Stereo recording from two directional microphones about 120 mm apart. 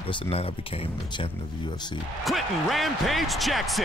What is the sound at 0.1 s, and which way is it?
Speech, 50° left (ahead or behind).